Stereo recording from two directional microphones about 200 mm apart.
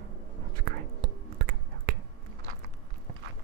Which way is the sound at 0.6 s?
50° right (ahead or behind).